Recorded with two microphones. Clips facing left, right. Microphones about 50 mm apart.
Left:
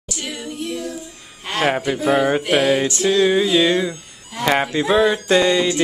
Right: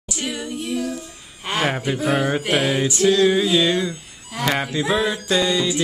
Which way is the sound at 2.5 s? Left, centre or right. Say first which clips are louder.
Left 3 dB; centre.